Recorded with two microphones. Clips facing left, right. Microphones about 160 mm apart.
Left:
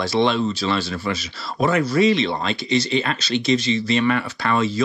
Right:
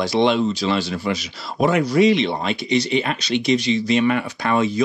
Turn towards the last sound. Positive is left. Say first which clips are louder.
# right 1 dB
turn(degrees=-15)  # may be behind; listen again after turning